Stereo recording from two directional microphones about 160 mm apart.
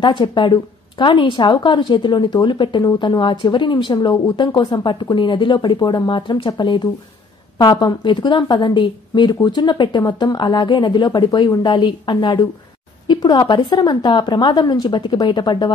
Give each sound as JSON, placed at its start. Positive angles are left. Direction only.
{"t": 0.0, "sound": "speech", "side_deg": 30}